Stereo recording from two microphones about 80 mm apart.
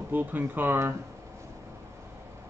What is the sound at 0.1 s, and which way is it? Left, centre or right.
Speech, right.